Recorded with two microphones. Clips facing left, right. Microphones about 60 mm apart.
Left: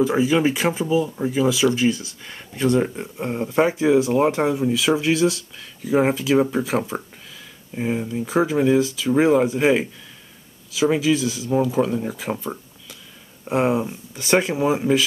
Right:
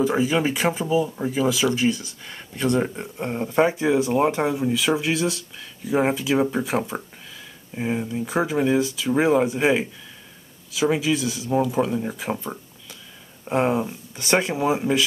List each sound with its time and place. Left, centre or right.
0.0 s speech: centre
1.9 s speech: centre
2.7 s speech: centre
10.8 s speech: centre
11.2 s speech: right
11.5 s speech: centre